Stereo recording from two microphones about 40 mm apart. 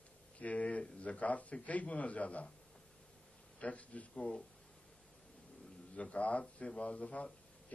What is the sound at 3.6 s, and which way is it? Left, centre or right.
Speech, left.